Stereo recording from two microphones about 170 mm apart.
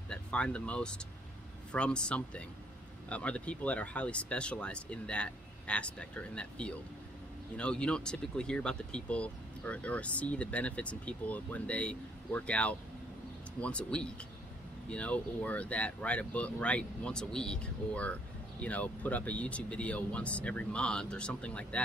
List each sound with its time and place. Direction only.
0.1 s speech: 5° left (ahead or behind)